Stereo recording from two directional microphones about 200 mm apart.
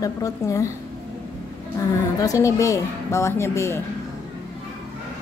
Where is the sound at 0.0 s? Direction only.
15° left (ahead or behind).